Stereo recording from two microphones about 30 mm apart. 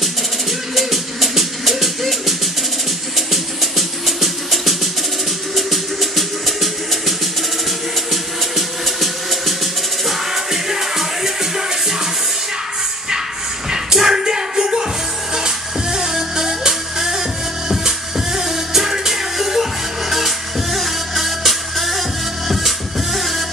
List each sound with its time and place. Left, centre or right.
0.7 s music: centre
13.9 s music: centre